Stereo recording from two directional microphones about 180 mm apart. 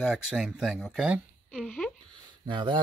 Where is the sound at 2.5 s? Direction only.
25° right (ahead or behind).